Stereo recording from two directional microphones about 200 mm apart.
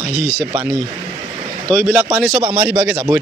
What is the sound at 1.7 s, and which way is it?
Speech, 5° right (ahead or behind).